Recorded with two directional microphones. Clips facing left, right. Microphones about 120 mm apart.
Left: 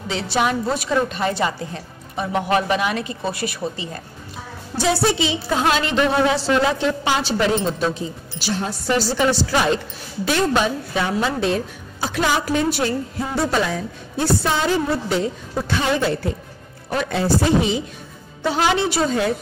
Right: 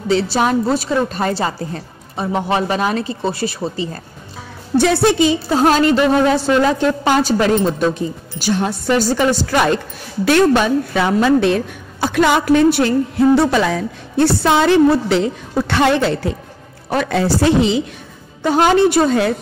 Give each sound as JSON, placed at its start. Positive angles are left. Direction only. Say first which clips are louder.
{"t": 0.1, "sound": "a woman's voice", "louder": "right 5 dB", "side_deg": -35}
{"t": 4.7, "sound": "a woman's voice", "louder": "right 6 dB", "side_deg": -55}
{"t": 5.5, "sound": "a woman's voice", "louder": "right 5 dB", "side_deg": -40}
{"t": 10.2, "sound": "a woman's voice", "louder": "right 6 dB", "side_deg": -65}
{"t": 18.5, "sound": "a woman's voice", "louder": "right 7 dB", "side_deg": -50}